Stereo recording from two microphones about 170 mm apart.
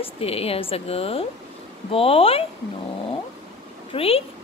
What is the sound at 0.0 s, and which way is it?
A woman's voice, 35° left (ahead or behind).